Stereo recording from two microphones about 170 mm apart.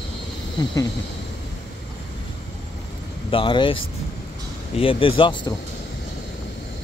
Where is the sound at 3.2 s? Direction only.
30° left (ahead or behind).